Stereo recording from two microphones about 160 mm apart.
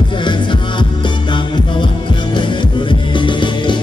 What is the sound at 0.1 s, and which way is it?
Music, 30° left (ahead or behind).